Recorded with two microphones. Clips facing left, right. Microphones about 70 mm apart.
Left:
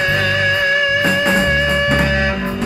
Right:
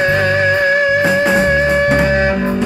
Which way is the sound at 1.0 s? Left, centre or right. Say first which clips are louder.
Right 3 dB; centre.